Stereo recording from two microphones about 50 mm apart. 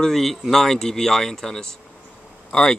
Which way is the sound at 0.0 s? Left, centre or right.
Centre.